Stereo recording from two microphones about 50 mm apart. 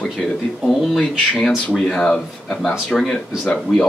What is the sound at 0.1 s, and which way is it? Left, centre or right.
Speech, centre.